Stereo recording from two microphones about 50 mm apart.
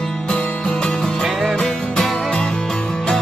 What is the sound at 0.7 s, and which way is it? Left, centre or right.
Music, centre.